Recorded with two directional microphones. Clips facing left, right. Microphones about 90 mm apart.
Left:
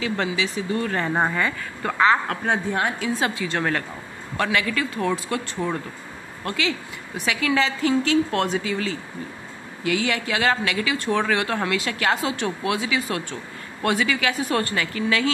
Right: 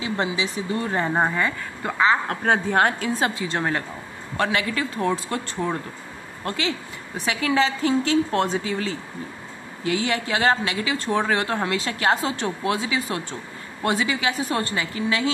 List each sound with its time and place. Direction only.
0.0 s a woman's voice: 25° right (ahead or behind)
1.1 s speech: 10° right (ahead or behind)
2.4 s speech: 60° right (ahead or behind)
3.2 s a woman's voice: 30° right (ahead or behind)
6.4 s a woman's voice: 35° right (ahead or behind)